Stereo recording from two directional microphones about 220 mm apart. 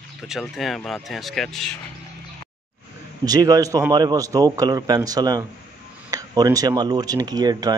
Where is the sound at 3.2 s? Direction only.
15° right (ahead or behind).